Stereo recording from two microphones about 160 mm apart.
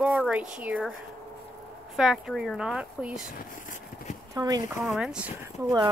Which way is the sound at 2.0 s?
Centre (ahead or behind).